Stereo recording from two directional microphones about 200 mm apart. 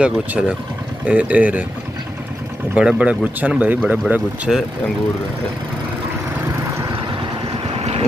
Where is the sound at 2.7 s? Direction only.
5° right (ahead or behind).